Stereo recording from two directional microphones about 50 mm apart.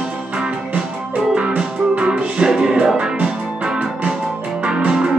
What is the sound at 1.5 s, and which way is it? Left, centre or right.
Music, right.